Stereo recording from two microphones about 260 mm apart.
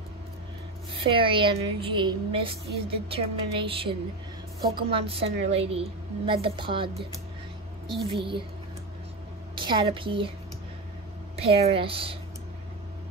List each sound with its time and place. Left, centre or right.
0.9 s a woman's voice: centre
8.1 s a woman's voice: centre
9.6 s a woman's voice: centre
11.3 s a woman's voice: right